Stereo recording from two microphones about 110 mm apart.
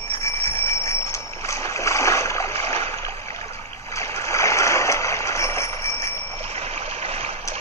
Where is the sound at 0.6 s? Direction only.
25° left (ahead or behind).